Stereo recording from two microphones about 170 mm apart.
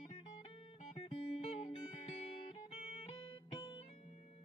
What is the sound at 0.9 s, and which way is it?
Music, 35° left (ahead or behind).